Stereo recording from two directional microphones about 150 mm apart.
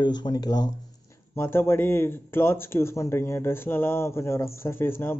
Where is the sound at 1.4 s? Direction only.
15° left (ahead or behind).